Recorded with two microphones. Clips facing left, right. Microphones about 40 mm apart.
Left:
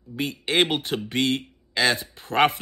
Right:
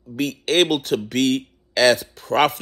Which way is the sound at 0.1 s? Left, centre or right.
Left.